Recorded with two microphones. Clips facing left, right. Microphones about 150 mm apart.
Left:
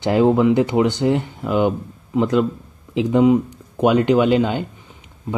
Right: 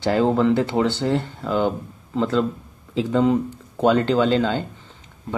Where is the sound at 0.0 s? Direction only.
15° left (ahead or behind).